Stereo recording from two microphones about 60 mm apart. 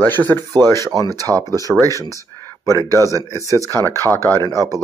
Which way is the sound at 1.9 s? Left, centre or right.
Left.